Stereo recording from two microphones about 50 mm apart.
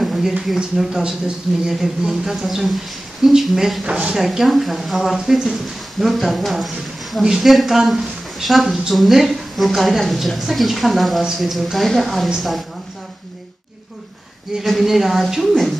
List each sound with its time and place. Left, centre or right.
0.0 s a sound: centre
0.6 s speech: centre
3.8 s a woman's voice: right
4.1 s speech: centre
14.6 s speech: centre